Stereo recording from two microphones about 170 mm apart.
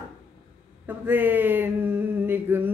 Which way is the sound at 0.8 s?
10° right (ahead or behind).